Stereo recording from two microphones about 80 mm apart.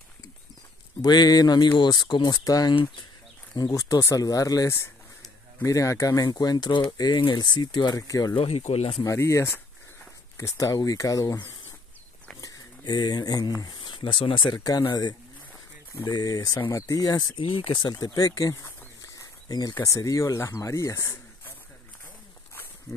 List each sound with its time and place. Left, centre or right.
1.0 s speech: left
1.8 s speech: left
2.4 s speech: left
3.7 s speech: left
4.6 s speech: left
9.0 s speech: left
12.4 s a sound: left
13.8 s speech: left
14.7 s speech: left
17.4 s speech: left
17.9 s speech: left
19.4 s speech: left
19.7 s speech: left
22.9 s speech: left